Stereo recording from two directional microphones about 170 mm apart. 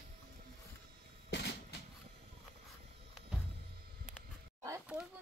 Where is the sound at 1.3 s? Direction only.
75° left (ahead or behind).